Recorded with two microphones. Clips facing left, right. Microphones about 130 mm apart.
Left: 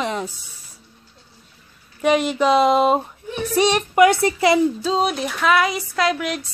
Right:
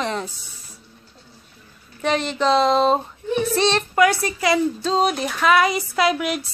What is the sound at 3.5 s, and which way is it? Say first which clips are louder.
A woman's voice: left 5 dB; 15° left (ahead or behind).